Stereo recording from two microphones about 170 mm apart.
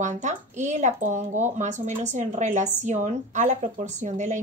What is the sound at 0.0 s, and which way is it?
Speech, 45° right (ahead or behind).